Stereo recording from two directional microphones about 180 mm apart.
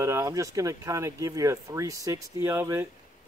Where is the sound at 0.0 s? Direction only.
20° right (ahead or behind).